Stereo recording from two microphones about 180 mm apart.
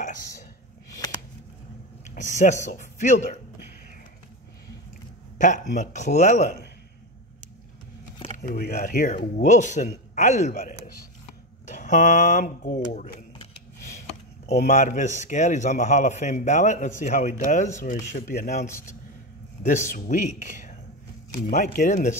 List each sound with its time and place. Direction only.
0.0 s a sound: 45° left (ahead or behind)
0.8 s a sound: 20° left (ahead or behind)
2.0 s a sound: 45° left (ahead or behind)
2.6 s speech: 45° left (ahead or behind)
5.4 s speech: 45° left (ahead or behind)
8.4 s a man's voice: 55° left (ahead or behind); by 13.1 s 40° left (ahead or behind)
14.4 s a man's voice: 40° left (ahead or behind)
18.7 s a man's voice: 15° left (ahead or behind)
19.7 s speech: 50° left (ahead or behind)
21.7 s speech: 55° left (ahead or behind)